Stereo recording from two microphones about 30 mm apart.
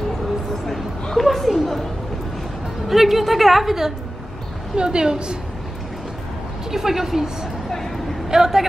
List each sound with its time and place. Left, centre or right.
1.1 s chatter: centre
1.6 s a sound: centre
2.9 s a woman's voice: centre
4.7 s a woman's voice: right
6.7 s a woman's voice: centre
8.3 s a woman's voice: centre